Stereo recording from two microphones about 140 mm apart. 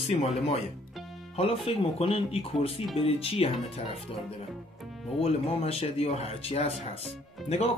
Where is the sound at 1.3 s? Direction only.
45° left (ahead or behind).